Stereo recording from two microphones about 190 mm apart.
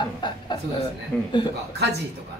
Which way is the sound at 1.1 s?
5° left (ahead or behind).